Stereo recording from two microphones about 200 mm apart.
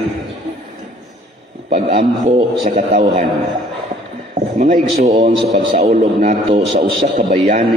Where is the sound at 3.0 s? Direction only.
25° right (ahead or behind).